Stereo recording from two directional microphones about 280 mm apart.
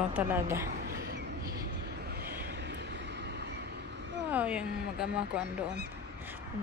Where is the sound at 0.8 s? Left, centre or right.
Right.